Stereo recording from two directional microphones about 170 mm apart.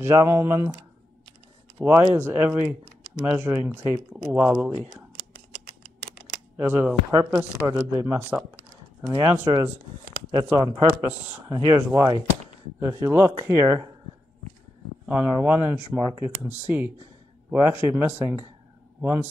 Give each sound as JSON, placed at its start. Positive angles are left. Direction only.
{"t": 0.0, "sound": "speech", "side_deg": -15}
{"t": 1.8, "sound": "speech", "side_deg": -10}
{"t": 6.5, "sound": "speech", "side_deg": -10}
{"t": 15.0, "sound": "speech", "side_deg": -10}